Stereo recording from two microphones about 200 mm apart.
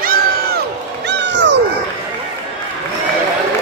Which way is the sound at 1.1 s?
60° right (ahead or behind).